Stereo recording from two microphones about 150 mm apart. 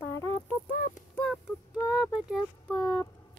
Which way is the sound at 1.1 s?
5° left (ahead or behind).